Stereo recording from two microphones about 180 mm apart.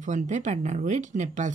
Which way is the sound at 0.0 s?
40° right (ahead or behind).